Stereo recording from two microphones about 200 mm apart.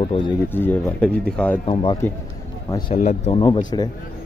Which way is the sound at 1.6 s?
25° left (ahead or behind).